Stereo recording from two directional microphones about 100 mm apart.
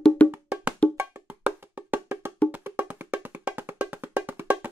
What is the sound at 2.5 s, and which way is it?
Music, 15° right (ahead or behind).